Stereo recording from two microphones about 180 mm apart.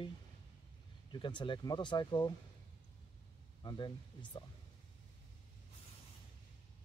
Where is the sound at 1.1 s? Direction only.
25° left (ahead or behind).